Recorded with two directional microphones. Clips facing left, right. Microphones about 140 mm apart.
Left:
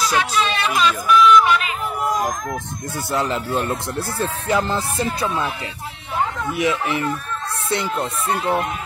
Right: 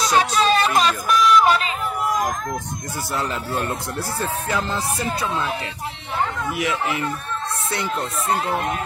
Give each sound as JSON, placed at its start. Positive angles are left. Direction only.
{"t": 0.0, "sound": "speech", "side_deg": -35}
{"t": 4.5, "sound": "music", "side_deg": 20}
{"t": 6.5, "sound": "music", "side_deg": 25}